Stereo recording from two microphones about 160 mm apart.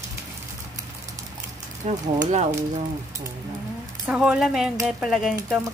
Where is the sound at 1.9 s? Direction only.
45° right (ahead or behind).